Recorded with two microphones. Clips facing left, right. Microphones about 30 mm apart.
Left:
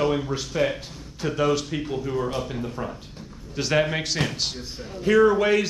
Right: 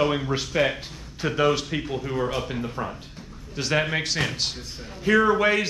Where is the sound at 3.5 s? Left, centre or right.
Centre.